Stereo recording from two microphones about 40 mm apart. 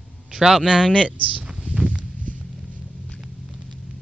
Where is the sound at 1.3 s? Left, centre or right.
Right.